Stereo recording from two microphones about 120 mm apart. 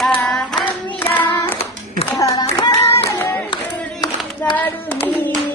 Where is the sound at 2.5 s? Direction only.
35° left (ahead or behind).